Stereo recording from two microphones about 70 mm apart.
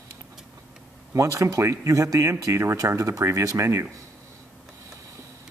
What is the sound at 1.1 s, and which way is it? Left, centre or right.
Speech, right.